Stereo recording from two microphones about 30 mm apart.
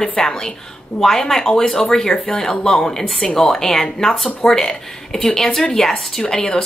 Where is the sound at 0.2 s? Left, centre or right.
Left.